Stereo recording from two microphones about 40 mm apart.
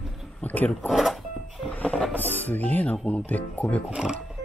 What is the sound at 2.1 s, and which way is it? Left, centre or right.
Speech, left.